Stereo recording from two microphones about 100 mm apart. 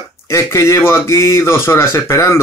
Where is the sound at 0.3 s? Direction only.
25° left (ahead or behind).